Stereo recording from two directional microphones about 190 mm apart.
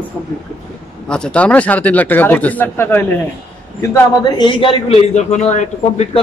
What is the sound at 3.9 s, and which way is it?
A man's voice, 25° left (ahead or behind).